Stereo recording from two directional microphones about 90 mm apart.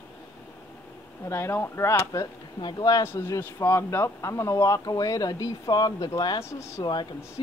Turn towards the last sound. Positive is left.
turn(degrees=55)  # may be behind; listen again after turning